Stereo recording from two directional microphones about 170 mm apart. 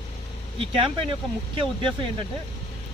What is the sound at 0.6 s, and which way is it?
Speech, 30° right (ahead or behind).